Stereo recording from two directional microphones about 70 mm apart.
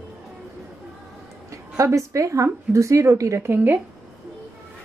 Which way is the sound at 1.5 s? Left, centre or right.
Right.